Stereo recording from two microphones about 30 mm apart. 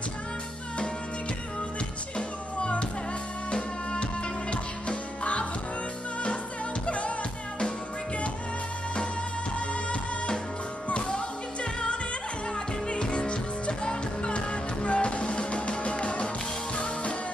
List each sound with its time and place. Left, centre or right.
2.1 s music: left
6.9 s music: left
10.9 s music: left